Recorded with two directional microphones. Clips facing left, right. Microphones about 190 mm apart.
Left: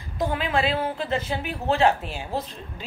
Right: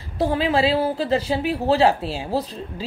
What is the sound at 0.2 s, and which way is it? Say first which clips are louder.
A woman's voice: right 5 dB; 35° right (ahead or behind).